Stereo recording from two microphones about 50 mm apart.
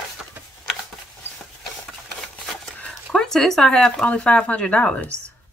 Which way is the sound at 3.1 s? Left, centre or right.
Centre.